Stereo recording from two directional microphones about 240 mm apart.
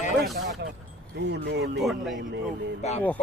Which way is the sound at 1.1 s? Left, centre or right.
Right.